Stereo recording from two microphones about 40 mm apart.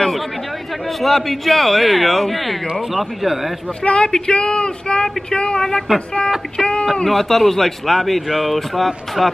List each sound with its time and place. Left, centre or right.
0.8 s speech: centre
3.8 s speech: left
7.1 s speech: centre